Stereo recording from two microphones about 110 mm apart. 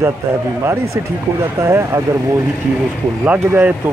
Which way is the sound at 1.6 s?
25° right (ahead or behind).